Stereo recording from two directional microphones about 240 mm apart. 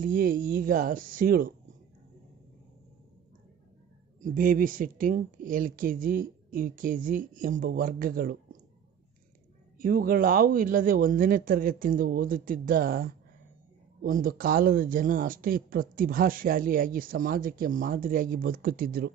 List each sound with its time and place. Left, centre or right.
0.0 s speech: right
4.2 s speech: right
9.8 s speech: right